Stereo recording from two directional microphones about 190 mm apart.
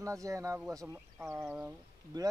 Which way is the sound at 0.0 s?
15° right (ahead or behind).